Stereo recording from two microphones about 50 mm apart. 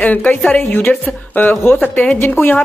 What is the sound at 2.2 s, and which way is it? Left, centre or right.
Speech, left.